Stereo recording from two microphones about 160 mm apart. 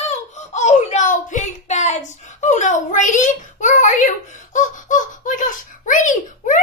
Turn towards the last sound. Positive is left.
turn(degrees=55)  # may be behind; listen again after turning